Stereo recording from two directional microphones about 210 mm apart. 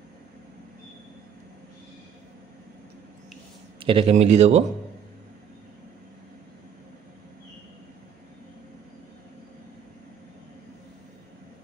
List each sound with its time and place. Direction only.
3.8 s a man's voice: 25° right (ahead or behind)